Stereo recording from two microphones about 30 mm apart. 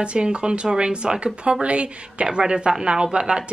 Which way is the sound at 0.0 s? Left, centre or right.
Right.